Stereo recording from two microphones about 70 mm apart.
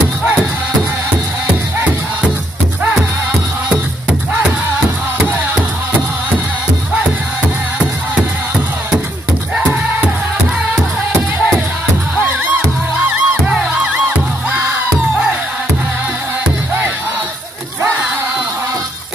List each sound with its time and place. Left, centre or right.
13.0 s music: centre